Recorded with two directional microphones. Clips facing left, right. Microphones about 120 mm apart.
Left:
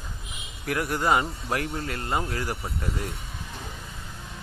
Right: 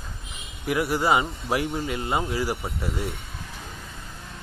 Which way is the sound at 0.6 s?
5° right (ahead or behind).